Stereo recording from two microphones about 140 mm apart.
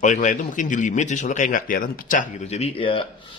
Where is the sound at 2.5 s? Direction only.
45° left (ahead or behind).